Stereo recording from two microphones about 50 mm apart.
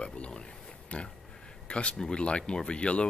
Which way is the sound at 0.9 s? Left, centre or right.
Left.